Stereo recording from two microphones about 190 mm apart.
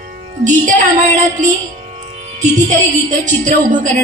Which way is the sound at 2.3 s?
40° right (ahead or behind).